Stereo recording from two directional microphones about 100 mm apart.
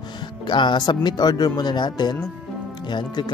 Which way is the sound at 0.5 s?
50° left (ahead or behind).